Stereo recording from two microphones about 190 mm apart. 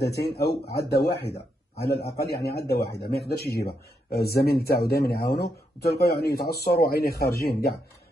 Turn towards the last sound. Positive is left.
turn(degrees=55)  # may be behind; listen again after turning